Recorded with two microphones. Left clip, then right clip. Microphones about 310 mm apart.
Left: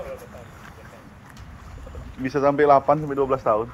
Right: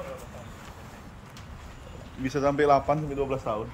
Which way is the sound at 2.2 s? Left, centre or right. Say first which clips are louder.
Left 5 dB; centre.